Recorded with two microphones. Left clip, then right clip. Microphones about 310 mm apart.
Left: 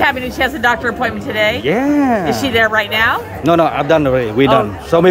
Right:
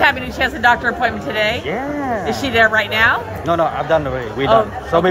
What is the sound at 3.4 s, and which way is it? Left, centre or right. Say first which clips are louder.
Speech: left 4 dB; left.